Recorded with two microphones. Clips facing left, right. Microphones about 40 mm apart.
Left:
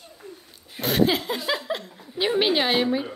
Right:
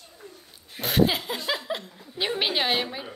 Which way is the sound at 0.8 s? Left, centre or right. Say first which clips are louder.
Left 1 dB; centre.